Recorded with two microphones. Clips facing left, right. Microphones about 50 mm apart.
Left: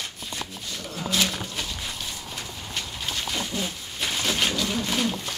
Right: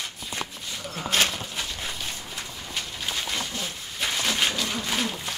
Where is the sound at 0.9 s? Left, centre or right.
Right.